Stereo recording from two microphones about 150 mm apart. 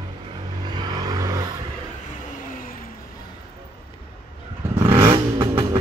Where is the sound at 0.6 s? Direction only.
30° right (ahead or behind).